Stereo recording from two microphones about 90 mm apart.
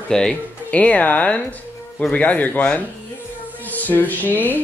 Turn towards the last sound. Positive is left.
turn(degrees=20)  # may be behind; listen again after turning